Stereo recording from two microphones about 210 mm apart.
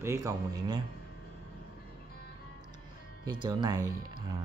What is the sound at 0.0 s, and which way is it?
Speech, 15° right (ahead or behind).